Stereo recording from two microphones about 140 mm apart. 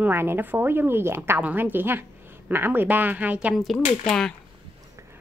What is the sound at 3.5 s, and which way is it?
Speech, centre (ahead or behind).